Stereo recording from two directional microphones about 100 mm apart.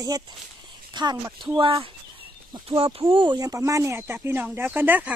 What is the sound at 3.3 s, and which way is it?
Speech, 35° right (ahead or behind).